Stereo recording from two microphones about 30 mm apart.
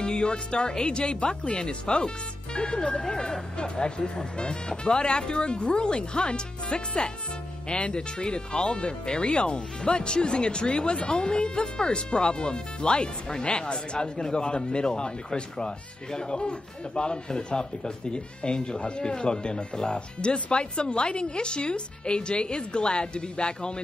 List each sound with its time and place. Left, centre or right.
0.0 s speech: left